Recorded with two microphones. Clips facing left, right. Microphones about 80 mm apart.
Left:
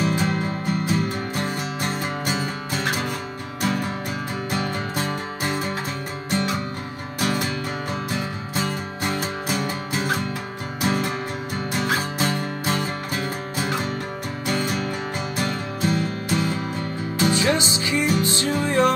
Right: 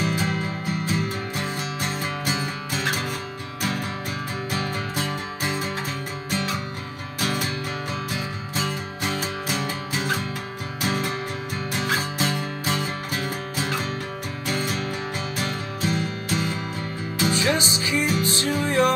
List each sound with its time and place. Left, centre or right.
0.0 s music: left
14.4 s music: left
17.2 s music: left